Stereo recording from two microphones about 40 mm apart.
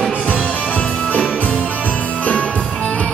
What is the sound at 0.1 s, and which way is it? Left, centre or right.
Music, left.